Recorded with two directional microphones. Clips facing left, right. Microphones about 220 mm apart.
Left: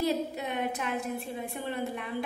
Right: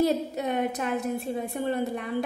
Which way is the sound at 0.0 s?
45° right (ahead or behind).